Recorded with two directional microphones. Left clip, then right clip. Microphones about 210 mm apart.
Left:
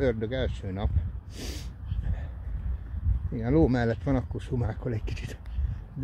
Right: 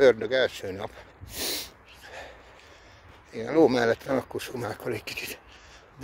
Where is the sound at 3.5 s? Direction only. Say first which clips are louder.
Right 4 dB; 35° right (ahead or behind).